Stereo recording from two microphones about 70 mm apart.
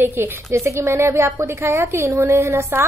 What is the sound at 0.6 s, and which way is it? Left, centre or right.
A woman's voice, right.